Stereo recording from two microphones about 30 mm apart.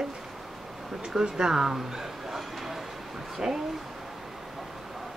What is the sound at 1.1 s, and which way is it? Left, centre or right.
Speech, centre.